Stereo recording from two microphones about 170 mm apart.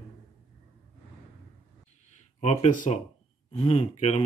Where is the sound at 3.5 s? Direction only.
35° left (ahead or behind).